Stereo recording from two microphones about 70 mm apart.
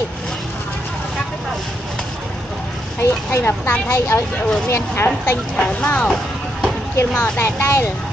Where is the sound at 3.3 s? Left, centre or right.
Left.